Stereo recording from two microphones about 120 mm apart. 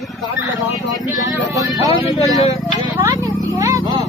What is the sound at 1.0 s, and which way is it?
Speech, 30° right (ahead or behind).